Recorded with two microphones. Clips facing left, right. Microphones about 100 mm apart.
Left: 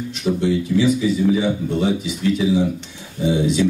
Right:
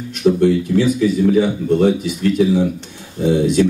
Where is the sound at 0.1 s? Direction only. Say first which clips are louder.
Right 7 dB; 50° right (ahead or behind).